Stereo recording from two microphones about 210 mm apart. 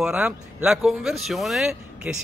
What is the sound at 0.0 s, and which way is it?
Speech, 5° right (ahead or behind).